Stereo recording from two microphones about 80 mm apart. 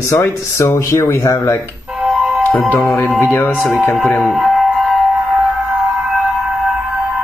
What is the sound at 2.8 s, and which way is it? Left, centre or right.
Speech, left.